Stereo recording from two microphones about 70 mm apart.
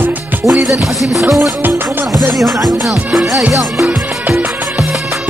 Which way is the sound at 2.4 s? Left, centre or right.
Right.